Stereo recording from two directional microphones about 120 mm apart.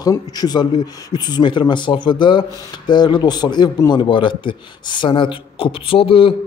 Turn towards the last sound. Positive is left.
turn(degrees=50)  # may be behind; listen again after turning